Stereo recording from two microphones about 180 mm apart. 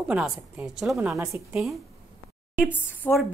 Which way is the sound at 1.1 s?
15° right (ahead or behind).